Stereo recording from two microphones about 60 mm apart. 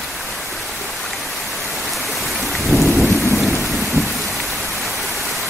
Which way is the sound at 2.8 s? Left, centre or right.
Centre.